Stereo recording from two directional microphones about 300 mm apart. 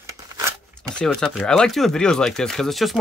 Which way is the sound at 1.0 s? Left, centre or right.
Centre.